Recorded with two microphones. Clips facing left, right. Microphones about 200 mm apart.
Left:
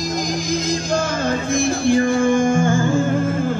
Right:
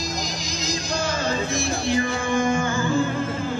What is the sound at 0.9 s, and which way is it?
Music, 50° left (ahead or behind).